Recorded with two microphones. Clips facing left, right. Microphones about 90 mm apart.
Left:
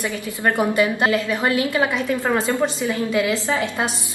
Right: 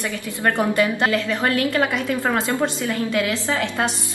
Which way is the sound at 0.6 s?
20° left (ahead or behind).